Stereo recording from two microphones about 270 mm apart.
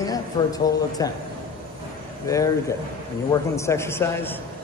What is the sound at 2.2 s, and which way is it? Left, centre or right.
Speech, centre.